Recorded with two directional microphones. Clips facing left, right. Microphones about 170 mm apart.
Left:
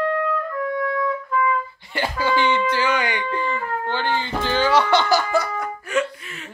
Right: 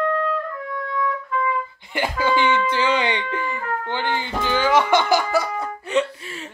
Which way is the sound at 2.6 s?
25° right (ahead or behind).